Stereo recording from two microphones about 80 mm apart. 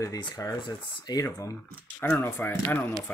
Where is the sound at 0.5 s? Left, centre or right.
Left.